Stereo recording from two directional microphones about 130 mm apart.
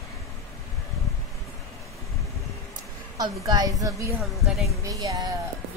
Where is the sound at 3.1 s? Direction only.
30° right (ahead or behind).